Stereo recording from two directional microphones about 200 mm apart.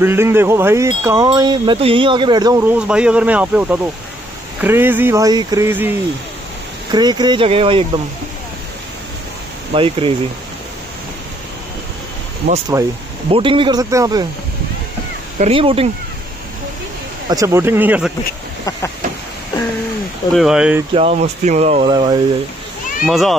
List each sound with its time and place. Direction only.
0.0 s speech: 10° right (ahead or behind)
6.9 s speech: 20° right (ahead or behind)
9.8 s speech: 25° right (ahead or behind)
12.7 s speech: 15° right (ahead or behind)
13.3 s speech: 25° right (ahead or behind)
15.3 s speech: 30° right (ahead or behind)
17.3 s speech: 15° right (ahead or behind)
20.3 s speech: 5° right (ahead or behind)
20.9 s speech: 35° right (ahead or behind)
21.9 s speech: 25° right (ahead or behind)
23.0 s speech: centre (ahead or behind)